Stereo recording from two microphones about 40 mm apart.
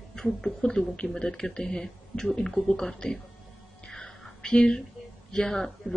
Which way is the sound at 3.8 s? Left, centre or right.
Centre.